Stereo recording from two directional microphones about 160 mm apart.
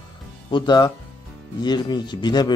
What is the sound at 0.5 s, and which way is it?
A man's voice, 30° left (ahead or behind).